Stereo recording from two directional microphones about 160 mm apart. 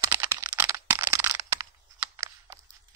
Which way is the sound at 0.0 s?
15° right (ahead or behind).